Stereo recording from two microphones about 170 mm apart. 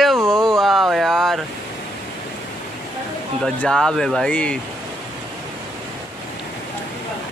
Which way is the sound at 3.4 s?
5° left (ahead or behind).